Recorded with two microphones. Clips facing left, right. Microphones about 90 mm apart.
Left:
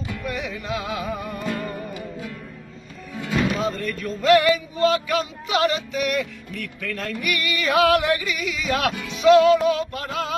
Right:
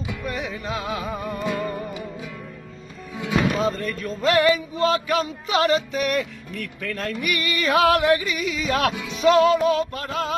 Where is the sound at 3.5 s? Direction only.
35° right (ahead or behind).